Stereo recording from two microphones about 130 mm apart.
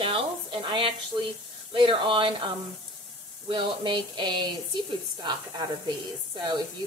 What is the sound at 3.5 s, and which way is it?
Speech, 35° right (ahead or behind).